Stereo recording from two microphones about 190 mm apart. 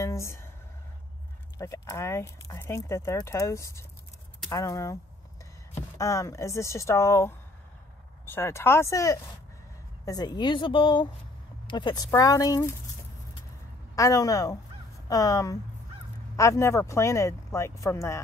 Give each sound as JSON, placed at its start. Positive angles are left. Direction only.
{"t": 0.0, "sound": "a sound", "side_deg": 15}
{"t": 1.6, "sound": "speech", "side_deg": 15}
{"t": 5.9, "sound": "speech", "side_deg": 15}
{"t": 13.9, "sound": "speech", "side_deg": 15}